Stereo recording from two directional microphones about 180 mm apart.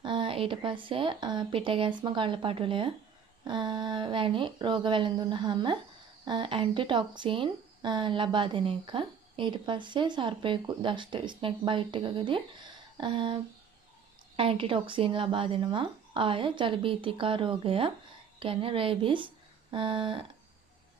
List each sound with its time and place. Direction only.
0.0 s speech: 25° right (ahead or behind)